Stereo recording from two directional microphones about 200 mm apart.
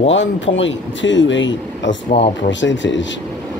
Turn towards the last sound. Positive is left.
turn(degrees=65)  # may be behind; listen again after turning